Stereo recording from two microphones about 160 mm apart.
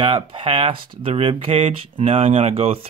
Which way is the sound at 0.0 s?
35° right (ahead or behind).